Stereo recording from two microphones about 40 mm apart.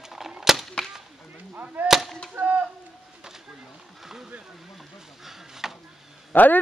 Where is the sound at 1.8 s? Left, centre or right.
Centre.